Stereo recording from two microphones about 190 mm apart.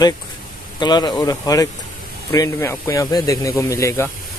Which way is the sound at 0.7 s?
20° left (ahead or behind).